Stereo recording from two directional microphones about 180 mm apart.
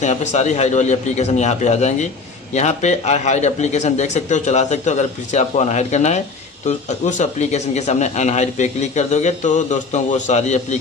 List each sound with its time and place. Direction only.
0.0 s speech: 40° left (ahead or behind)